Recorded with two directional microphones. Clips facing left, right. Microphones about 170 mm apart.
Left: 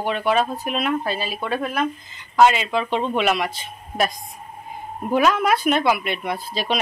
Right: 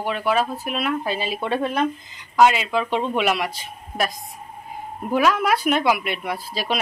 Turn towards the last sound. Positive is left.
turn(degrees=-10)  # may be behind; listen again after turning